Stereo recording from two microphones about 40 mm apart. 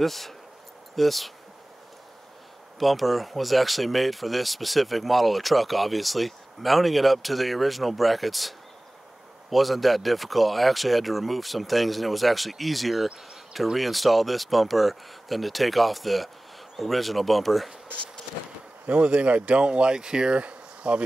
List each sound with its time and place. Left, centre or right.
0.0 s speech: centre
2.8 s speech: centre
18.9 s speech: right
20.3 s insect: right